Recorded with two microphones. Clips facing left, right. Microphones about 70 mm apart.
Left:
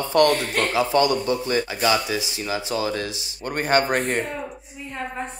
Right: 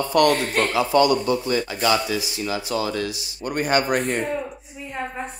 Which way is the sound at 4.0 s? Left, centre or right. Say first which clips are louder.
Even; left.